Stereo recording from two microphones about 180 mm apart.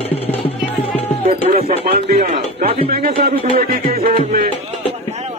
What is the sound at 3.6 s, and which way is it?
Speech, 55° right (ahead or behind).